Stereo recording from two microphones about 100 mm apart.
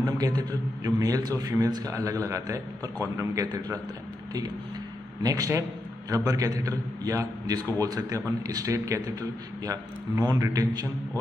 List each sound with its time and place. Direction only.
0.0 s a man's voice: 40° right (ahead or behind)
5.2 s a man's voice: 35° right (ahead or behind)
10.3 s a man's voice: 35° right (ahead or behind)